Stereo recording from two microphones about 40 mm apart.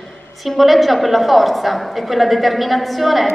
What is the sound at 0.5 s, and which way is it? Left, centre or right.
A woman's voice, centre.